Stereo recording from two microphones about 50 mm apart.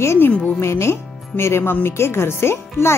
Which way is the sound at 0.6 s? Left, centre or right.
Left.